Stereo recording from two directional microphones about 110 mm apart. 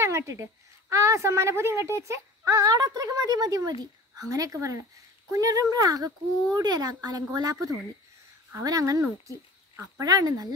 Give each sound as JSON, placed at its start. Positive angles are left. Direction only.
{"t": 0.0, "sound": "a woman's voice", "side_deg": -25}